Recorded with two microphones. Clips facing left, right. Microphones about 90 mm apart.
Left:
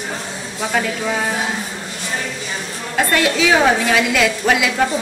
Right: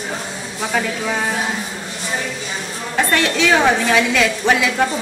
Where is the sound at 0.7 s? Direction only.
Centre (ahead or behind).